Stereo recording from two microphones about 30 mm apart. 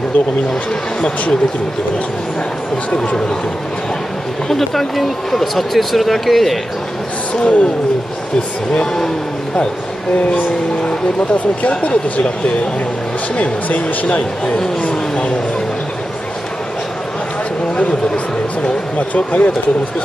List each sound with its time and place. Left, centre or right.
4.5 s speech: centre
7.4 s speech: left
11.8 s speech: left
14.9 s speech: left
17.8 s speech: left